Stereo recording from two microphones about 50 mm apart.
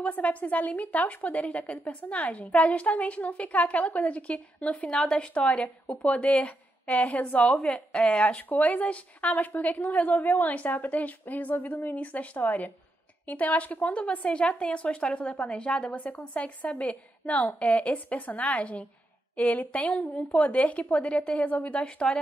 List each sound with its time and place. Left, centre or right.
0.0 s a woman's voice: left